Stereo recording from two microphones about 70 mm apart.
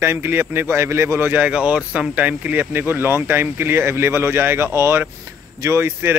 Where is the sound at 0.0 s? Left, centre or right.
Right.